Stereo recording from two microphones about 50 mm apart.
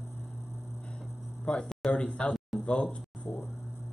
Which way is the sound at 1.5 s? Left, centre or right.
Left.